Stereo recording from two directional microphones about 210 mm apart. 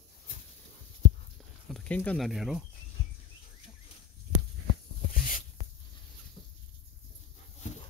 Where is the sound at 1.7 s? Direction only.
5° left (ahead or behind).